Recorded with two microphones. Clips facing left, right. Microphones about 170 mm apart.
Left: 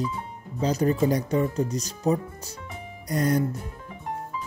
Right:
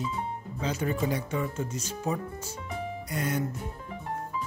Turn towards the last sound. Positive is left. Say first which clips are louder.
# left 7 dB
turn(degrees=35)  # may be behind; listen again after turning